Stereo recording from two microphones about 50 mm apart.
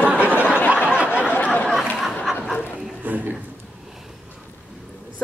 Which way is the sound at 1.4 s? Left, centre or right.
Left.